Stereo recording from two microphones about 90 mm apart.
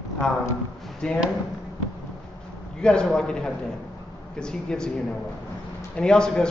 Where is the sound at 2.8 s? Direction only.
10° left (ahead or behind).